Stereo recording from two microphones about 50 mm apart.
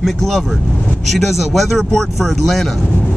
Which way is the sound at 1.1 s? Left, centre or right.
Centre.